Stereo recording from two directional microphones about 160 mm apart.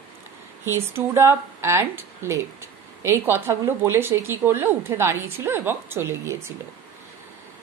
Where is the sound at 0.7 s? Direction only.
15° right (ahead or behind).